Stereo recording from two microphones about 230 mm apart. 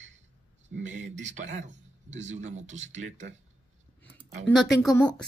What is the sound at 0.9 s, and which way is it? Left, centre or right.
Speech, right.